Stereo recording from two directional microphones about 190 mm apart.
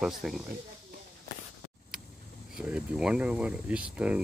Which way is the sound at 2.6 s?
5° right (ahead or behind).